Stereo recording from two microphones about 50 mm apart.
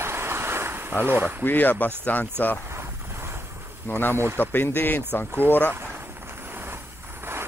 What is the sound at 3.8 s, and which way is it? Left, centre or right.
Speech, left.